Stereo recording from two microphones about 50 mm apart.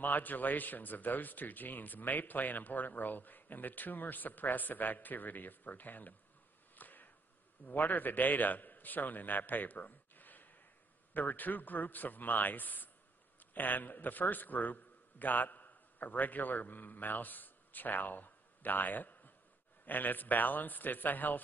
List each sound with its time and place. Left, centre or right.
0.0 s speech: left
6.7 s a sound: left
7.6 s a man's voice: left